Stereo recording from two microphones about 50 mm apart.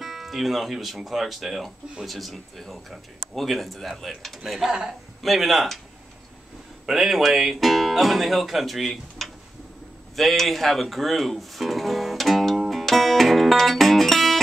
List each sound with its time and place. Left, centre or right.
0.0 s speech: centre
4.6 s a man's voice: centre
5.2 s speech: centre
6.9 s speech: centre
10.1 s music: centre